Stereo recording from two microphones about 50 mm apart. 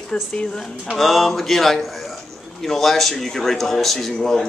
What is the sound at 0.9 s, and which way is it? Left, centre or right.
A man's voice, centre.